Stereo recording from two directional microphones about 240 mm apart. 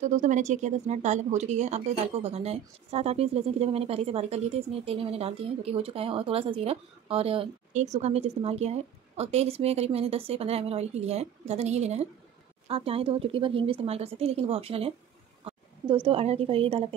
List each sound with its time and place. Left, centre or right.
0.0 s speech: right